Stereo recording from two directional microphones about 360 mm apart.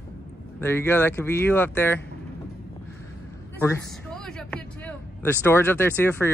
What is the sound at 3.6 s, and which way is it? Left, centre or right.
Speech, centre.